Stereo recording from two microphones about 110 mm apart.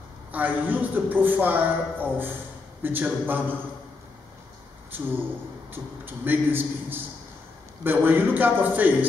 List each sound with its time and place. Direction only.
0.3 s a man's voice: 15° right (ahead or behind)
4.9 s a man's voice: 15° right (ahead or behind)